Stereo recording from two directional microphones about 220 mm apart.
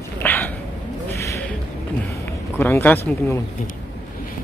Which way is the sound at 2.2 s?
10° left (ahead or behind).